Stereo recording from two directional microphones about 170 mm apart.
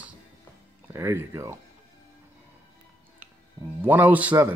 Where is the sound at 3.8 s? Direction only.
10° right (ahead or behind).